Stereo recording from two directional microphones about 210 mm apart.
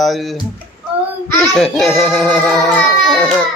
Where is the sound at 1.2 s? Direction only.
5° left (ahead or behind).